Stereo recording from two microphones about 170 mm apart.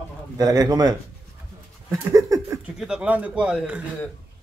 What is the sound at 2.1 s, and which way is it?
Speech, 20° right (ahead or behind).